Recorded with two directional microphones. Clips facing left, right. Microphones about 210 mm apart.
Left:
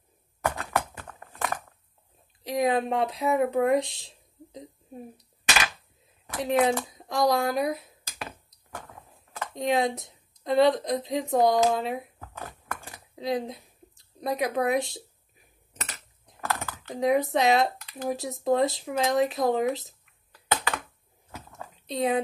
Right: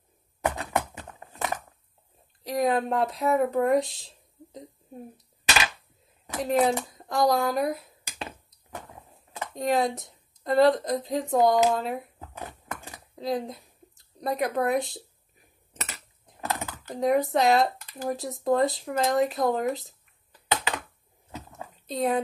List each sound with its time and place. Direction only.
0.4 s typing: 20° right (ahead or behind)
2.4 s speech: centre (ahead or behind)
6.4 s speech: centre (ahead or behind)
9.5 s speech: centre (ahead or behind)
12.2 s a sound: 20° right (ahead or behind)
13.1 s a woman's voice: centre (ahead or behind)
16.3 s typing: 20° right (ahead or behind)
16.9 s speech: centre (ahead or behind)
20.3 s computer keyboard: 20° right (ahead or behind)
21.3 s a sound: 20° right (ahead or behind)
21.8 s speech: centre (ahead or behind)